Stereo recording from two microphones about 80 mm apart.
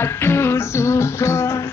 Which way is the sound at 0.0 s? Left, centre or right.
Left.